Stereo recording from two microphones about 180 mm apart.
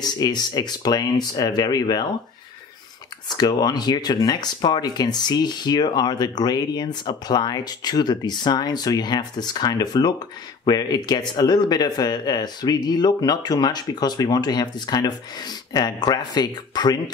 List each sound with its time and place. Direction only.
0.0 s speech: 20° left (ahead or behind)
3.3 s speech: 25° left (ahead or behind)